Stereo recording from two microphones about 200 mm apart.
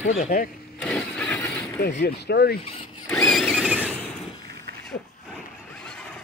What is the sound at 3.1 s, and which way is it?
Squeal, 5° left (ahead or behind).